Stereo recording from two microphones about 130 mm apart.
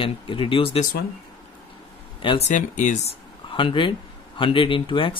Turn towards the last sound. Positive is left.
turn(degrees=40)  # may be behind; listen again after turning